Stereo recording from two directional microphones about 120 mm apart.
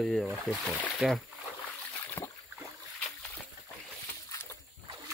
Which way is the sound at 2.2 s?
25° left (ahead or behind).